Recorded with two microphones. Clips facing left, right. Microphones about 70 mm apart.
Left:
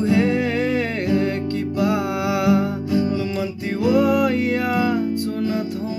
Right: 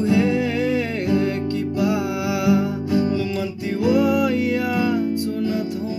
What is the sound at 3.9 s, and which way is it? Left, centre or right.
Music, left.